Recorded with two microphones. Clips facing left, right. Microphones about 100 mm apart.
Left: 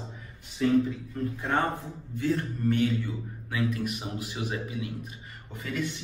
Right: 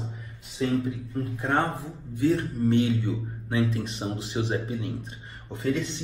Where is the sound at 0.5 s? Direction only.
25° right (ahead or behind).